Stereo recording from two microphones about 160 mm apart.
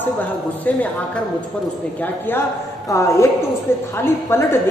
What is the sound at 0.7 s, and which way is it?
A woman's voice, 10° left (ahead or behind).